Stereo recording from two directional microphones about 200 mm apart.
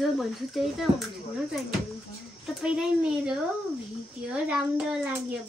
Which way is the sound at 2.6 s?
5° right (ahead or behind).